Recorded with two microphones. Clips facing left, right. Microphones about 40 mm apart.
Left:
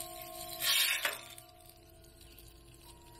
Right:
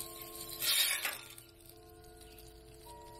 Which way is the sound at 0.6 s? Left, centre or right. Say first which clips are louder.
Left 3 dB; left.